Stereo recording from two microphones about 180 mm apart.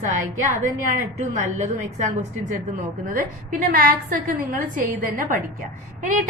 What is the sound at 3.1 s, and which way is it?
A woman's voice, 50° right (ahead or behind).